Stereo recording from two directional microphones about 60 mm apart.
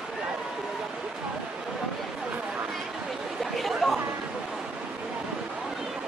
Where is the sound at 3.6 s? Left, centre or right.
Centre.